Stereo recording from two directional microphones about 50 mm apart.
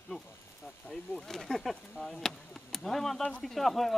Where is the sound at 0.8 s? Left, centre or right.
Centre.